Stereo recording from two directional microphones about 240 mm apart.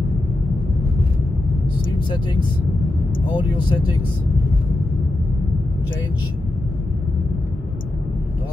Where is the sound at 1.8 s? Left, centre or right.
Centre.